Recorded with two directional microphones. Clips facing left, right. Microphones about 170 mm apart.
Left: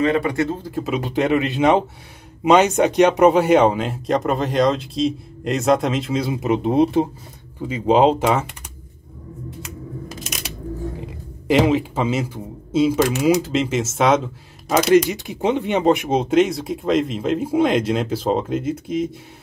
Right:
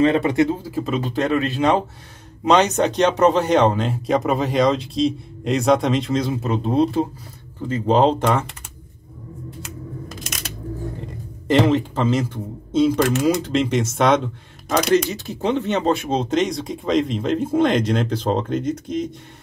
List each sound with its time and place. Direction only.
0.0 s speech: 25° right (ahead or behind); by 0.8 s 5° right (ahead or behind)
0.8 s speech: 15° left (ahead or behind)
10.0 s a sound: 10° left (ahead or behind)
11.1 s speech: 5° left (ahead or behind)
15.0 s speech: 15° left (ahead or behind)